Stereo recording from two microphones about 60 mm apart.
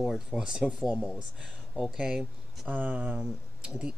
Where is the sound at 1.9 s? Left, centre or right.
Centre.